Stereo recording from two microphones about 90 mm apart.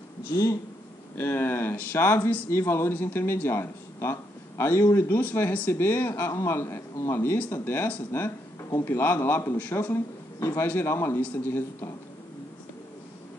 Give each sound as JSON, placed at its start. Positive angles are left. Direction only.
{"t": 1.1, "sound": "speech", "side_deg": 25}